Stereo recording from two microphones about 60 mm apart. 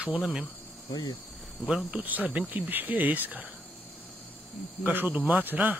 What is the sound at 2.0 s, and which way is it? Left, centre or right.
A man's voice, right.